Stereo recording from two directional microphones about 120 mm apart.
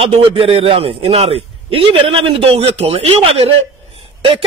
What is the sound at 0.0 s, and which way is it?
A man's voice, 50° right (ahead or behind).